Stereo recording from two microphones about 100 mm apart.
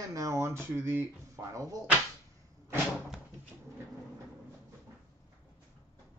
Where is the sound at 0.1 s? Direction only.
30° right (ahead or behind).